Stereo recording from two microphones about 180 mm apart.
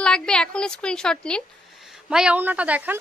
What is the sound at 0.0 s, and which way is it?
Speech, 5° left (ahead or behind).